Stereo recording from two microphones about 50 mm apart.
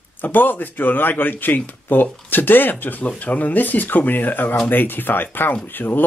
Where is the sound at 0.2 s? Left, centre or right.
Left.